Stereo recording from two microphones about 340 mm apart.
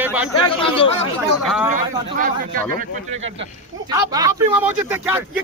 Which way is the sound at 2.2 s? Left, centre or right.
Right.